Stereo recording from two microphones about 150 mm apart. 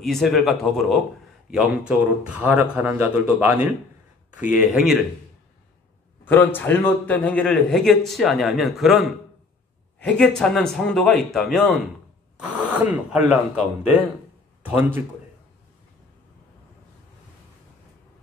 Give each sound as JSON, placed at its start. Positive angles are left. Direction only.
{"t": 0.0, "sound": "a man's voice", "side_deg": 0}
{"t": 6.2, "sound": "a man's voice", "side_deg": 15}